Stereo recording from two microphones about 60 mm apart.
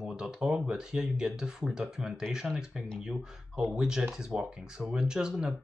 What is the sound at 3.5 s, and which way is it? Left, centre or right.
Speech, centre.